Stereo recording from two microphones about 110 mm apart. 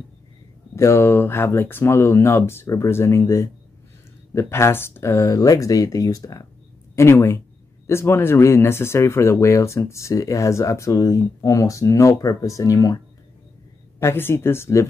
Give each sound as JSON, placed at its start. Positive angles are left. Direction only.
{"t": 0.7, "sound": "speech", "side_deg": 25}
{"t": 13.9, "sound": "speech", "side_deg": 20}